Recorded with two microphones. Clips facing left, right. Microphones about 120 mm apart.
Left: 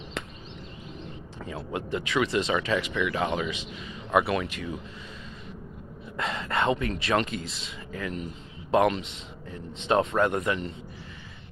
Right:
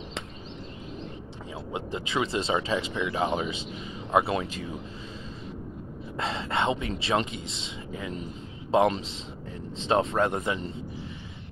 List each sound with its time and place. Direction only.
1.4 s speech: 15° right (ahead or behind)
1.9 s speech: 25° right (ahead or behind)
6.1 s speech: 30° right (ahead or behind)